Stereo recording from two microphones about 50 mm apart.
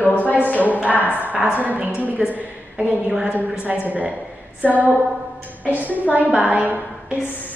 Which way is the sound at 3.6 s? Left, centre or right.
Right.